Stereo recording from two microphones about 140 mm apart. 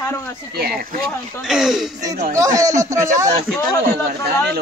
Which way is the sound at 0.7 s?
90° right.